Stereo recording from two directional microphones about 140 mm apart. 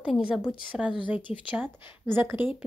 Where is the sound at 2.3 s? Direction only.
35° left (ahead or behind).